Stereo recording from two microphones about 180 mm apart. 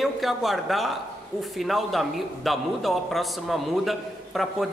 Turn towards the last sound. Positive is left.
turn(degrees=0)  # may be behind; listen again after turning